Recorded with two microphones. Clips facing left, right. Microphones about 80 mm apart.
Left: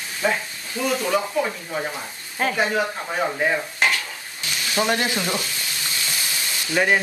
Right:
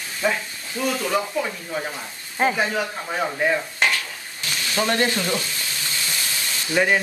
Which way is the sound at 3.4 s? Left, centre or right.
Centre.